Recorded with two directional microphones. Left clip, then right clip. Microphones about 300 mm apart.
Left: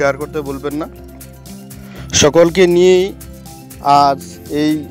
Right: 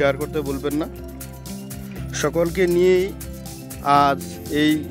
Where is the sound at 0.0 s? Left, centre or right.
Centre.